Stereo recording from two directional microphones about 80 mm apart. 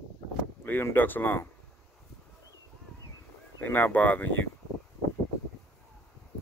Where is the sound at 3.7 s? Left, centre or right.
Left.